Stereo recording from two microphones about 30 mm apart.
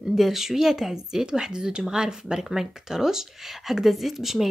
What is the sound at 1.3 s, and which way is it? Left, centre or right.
Speech, right.